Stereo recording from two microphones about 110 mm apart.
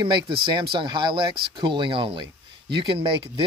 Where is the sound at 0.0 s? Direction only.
40° right (ahead or behind).